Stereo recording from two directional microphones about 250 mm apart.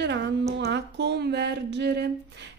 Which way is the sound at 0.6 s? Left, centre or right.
Right.